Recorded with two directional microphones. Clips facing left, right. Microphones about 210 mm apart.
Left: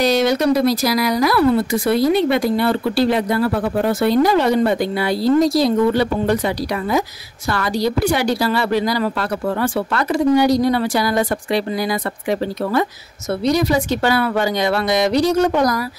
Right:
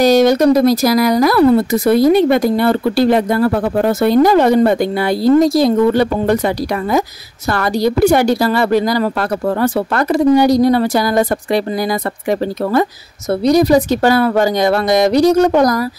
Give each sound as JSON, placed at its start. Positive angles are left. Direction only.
{"t": 0.0, "sound": "speech", "side_deg": -45}